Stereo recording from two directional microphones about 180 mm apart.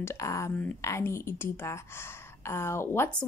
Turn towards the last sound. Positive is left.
turn(degrees=15)  # may be behind; listen again after turning